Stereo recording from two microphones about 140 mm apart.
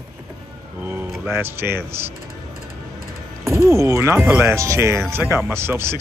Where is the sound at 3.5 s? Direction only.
20° right (ahead or behind).